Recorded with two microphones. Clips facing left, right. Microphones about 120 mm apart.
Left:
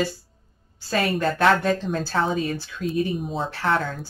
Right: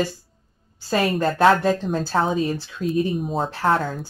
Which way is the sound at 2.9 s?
Centre (ahead or behind).